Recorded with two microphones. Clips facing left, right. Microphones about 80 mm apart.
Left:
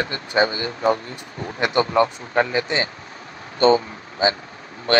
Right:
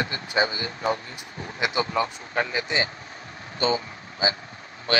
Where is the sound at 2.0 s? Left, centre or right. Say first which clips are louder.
Left 6 dB; left.